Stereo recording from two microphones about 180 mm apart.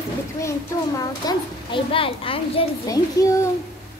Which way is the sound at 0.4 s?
20° left (ahead or behind).